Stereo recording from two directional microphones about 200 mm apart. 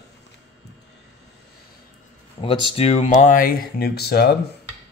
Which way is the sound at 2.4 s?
25° left (ahead or behind).